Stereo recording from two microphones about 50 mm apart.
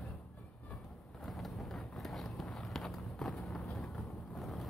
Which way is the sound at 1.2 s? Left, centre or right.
Centre.